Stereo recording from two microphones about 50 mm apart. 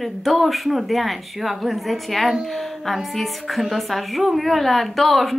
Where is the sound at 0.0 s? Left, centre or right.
Centre.